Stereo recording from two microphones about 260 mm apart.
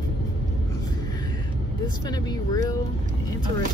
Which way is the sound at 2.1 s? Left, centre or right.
Centre.